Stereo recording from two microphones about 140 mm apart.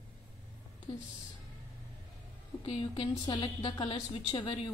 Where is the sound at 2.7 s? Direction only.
40° left (ahead or behind).